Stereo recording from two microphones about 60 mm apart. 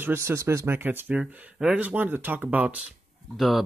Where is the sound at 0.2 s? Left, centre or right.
Right.